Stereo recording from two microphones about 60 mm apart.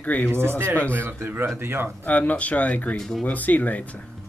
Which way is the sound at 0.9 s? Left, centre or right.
Right.